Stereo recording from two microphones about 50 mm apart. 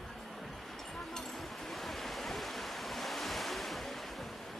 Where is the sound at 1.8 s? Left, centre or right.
Centre.